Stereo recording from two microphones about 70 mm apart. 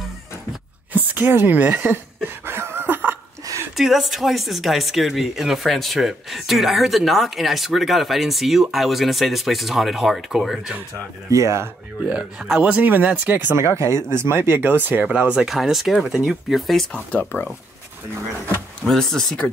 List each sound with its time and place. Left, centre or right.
0.9 s speech: right
2.2 s a sound: right
3.7 s speech: centre
11.2 s speech: right
12.1 s speech: centre; by 13.6 s right
13.6 s speech: right
15.0 s speech: centre
15.4 s speech: centre
16.9 s speech: left
18.9 s speech: centre